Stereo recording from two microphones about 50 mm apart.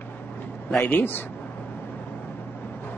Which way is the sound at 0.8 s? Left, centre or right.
Left.